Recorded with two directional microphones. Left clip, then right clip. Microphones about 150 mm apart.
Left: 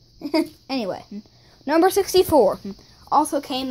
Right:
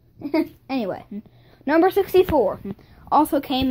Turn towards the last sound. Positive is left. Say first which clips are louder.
# right 1 dB
turn(degrees=-15)  # may be behind; listen again after turning